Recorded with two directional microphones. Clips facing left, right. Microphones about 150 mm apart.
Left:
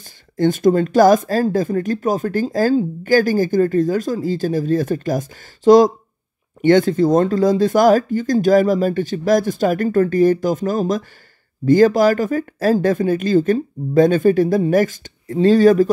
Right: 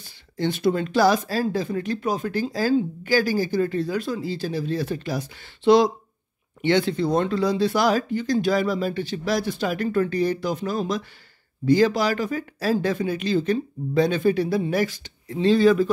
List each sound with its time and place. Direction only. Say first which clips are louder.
0.0 s speech: left 8 dB; 45° left (ahead or behind)